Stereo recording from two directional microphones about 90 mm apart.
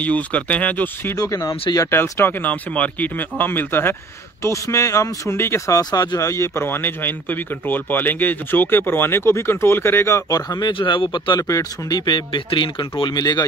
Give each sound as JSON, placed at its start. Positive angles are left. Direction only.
{"t": 0.0, "sound": "speech", "side_deg": 15}
{"t": 1.1, "sound": "speech", "side_deg": 40}
{"t": 1.9, "sound": "speech", "side_deg": 25}
{"t": 4.4, "sound": "speech", "side_deg": 35}
{"t": 5.8, "sound": "speech", "side_deg": 45}
{"t": 10.7, "sound": "speech", "side_deg": 70}
{"t": 11.4, "sound": "speech", "side_deg": 35}
{"t": 12.1, "sound": "speech", "side_deg": 65}
{"t": 13.2, "sound": "speech", "side_deg": 45}